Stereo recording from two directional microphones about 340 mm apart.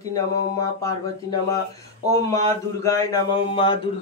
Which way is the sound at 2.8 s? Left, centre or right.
Centre.